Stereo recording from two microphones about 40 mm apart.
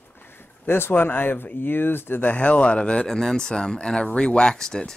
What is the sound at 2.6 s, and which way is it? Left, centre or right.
Speech, left.